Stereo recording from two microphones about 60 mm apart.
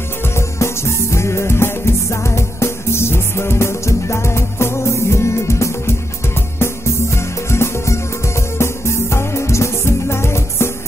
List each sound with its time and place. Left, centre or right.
0.4 s music: left